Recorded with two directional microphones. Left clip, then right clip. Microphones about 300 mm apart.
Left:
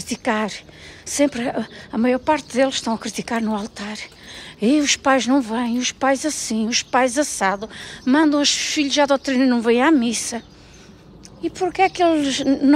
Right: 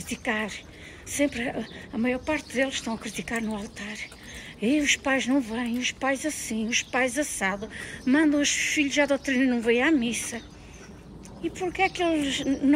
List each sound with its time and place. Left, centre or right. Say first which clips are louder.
0.0 s a sound: left 7 dB; centre
1.1 s a woman's voice: left 7 dB; centre
1.4 s a woman's voice: left 7 dB; left
1.9 s a woman's voice: left 9 dB; centre
11.5 s a woman's voice: left 8 dB; centre
12.3 s a woman's voice: left 7 dB; left